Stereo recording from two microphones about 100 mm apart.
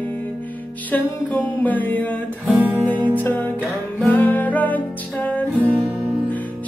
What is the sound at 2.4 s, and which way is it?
Music, 5° right (ahead or behind).